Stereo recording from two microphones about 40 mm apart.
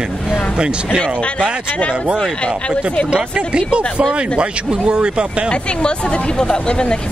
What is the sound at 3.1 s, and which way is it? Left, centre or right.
Speech, right.